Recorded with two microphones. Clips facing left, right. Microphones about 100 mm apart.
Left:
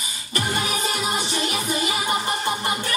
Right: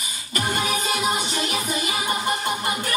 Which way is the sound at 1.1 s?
25° left (ahead or behind).